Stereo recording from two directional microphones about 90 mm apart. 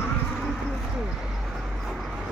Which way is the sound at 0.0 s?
Centre (ahead or behind).